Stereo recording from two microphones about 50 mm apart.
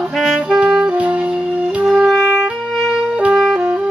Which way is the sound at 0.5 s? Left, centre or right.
Centre.